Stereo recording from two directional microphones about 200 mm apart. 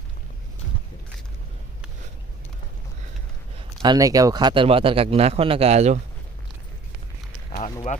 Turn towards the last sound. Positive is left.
turn(degrees=35)  # may be behind; listen again after turning